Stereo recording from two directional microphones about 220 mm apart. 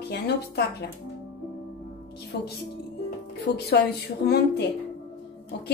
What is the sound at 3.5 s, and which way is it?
Speech, 45° left (ahead or behind).